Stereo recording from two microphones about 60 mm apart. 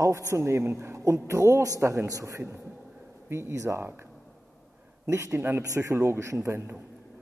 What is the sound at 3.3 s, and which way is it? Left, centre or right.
Speech, right.